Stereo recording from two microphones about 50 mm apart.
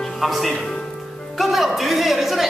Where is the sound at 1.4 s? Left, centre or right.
Centre.